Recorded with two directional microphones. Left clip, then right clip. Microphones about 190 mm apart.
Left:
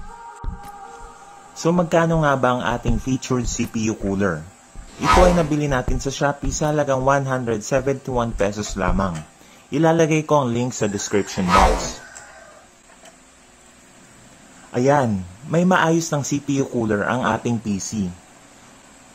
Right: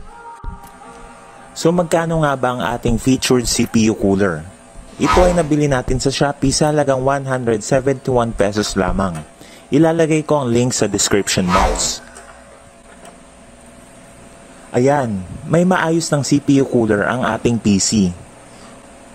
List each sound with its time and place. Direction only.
1.5 s speech: 40° right (ahead or behind)
4.9 s a man's voice: centre (ahead or behind)
5.5 s speech: 45° right (ahead or behind)
11.4 s a man's voice: centre (ahead or behind)
14.7 s speech: 35° right (ahead or behind)